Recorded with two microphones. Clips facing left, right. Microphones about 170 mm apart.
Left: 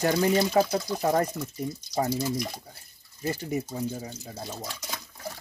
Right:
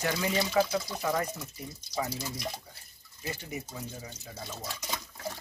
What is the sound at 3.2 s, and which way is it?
Speech, 40° left (ahead or behind).